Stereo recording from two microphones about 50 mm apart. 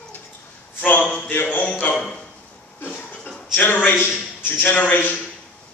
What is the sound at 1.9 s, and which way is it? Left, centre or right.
Speech, centre.